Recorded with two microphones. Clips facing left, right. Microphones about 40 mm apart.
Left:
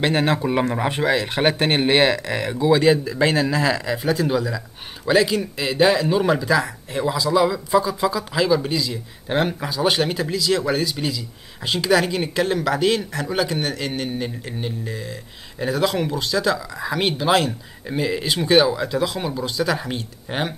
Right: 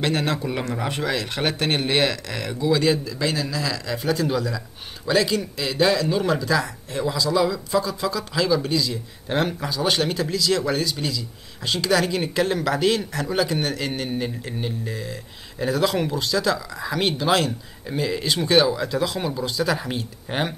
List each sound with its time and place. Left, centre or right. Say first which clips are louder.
0.0 s speech: left 4 dB; left
3.8 s a man's voice: left 2 dB; centre